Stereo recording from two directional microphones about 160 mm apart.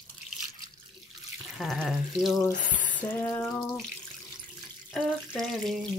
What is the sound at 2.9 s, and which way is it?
Water tap, 10° left (ahead or behind).